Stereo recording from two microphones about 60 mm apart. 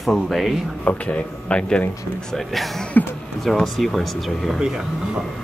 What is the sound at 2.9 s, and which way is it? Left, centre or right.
Speech, left.